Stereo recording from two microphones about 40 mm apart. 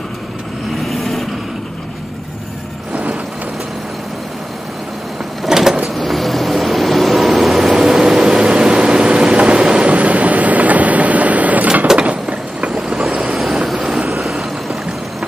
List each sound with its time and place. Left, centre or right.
0.8 s vehicle: centre
5.4 s a sound: centre
5.9 s vehicle: centre
7.7 s vehicle: centre
9.8 s vehicle: right
12.0 s a sound: right
13.7 s vehicle: centre